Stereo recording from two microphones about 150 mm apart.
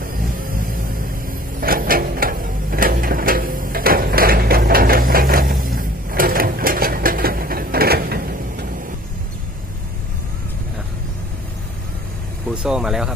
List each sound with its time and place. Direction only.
0.0 s vehicle: 70° right (ahead or behind)
12.6 s speech: 5° right (ahead or behind)